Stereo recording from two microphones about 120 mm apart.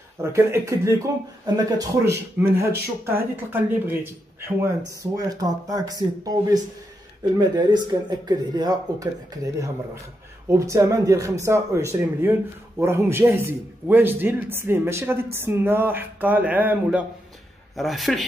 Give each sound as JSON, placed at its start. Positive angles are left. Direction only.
{"t": 0.2, "sound": "a man's voice", "side_deg": -25}
{"t": 5.1, "sound": "a man's voice", "side_deg": -30}
{"t": 17.7, "sound": "a man's voice", "side_deg": 0}